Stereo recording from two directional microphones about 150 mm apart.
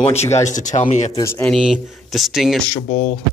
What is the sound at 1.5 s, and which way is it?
Speech, 5° right (ahead or behind).